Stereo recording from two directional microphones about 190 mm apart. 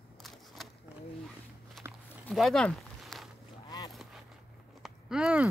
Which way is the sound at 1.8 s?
15° right (ahead or behind).